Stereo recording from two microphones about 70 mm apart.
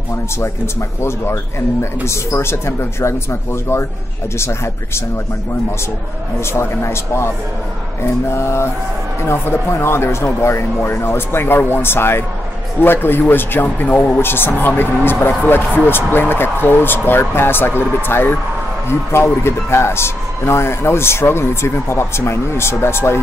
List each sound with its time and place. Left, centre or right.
0.4 s speech: left
6.4 s speech: left